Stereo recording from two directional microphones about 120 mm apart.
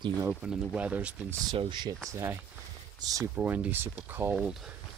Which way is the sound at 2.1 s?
25° right (ahead or behind).